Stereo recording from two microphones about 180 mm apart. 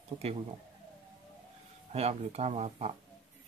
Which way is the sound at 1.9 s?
35° right (ahead or behind).